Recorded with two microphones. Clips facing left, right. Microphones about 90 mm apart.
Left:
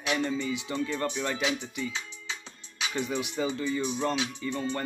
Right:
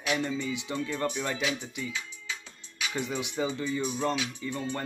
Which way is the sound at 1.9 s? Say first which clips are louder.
Even; 25° left (ahead or behind).